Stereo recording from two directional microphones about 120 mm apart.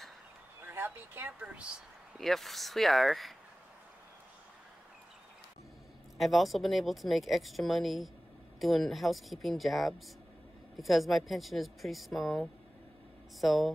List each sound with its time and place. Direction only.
0.6 s speech: 15° right (ahead or behind); by 3.3 s centre (ahead or behind)
6.1 s speech: centre (ahead or behind)